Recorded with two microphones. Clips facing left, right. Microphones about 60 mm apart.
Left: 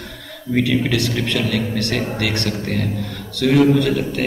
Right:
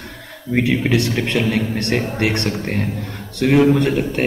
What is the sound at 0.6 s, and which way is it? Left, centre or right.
A man's voice, right.